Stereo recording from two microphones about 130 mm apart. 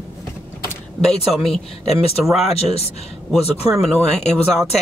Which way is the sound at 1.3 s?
Centre (ahead or behind).